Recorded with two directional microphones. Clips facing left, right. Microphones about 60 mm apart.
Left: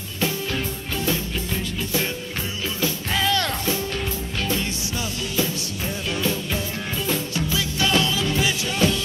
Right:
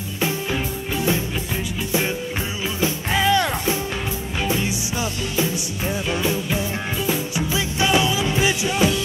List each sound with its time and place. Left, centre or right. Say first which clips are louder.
0.2 s music: right 2 dB; centre